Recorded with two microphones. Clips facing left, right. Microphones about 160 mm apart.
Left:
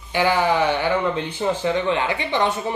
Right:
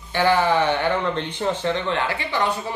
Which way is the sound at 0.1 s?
10° left (ahead or behind).